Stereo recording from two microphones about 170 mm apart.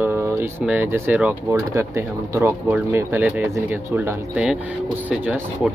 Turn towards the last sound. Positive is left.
turn(degrees=-10)  # may be behind; listen again after turning